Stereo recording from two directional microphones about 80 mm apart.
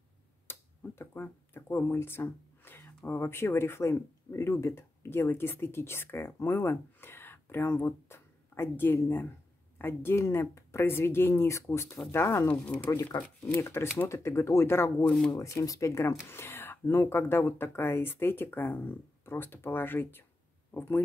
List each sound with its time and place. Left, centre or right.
0.5 s a sound: left
3.1 s speech: left
12.4 s speech: centre
12.9 s speech: left
13.6 s speech: left